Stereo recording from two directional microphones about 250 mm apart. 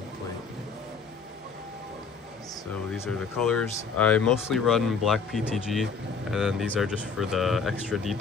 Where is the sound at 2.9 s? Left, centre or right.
Centre.